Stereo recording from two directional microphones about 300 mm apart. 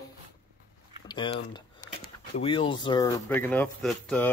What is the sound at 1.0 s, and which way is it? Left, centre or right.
Speech, centre.